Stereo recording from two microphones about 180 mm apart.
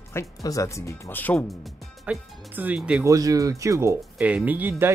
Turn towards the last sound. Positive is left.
turn(degrees=-10)  # may be behind; listen again after turning